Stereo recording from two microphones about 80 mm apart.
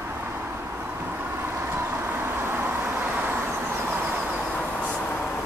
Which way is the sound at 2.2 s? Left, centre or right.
Right.